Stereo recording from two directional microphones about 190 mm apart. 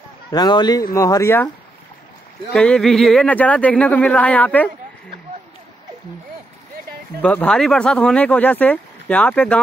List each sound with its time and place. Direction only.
0.3 s speech: 20° left (ahead or behind)
2.5 s speech: 5° left (ahead or behind)
7.2 s speech: 5° left (ahead or behind)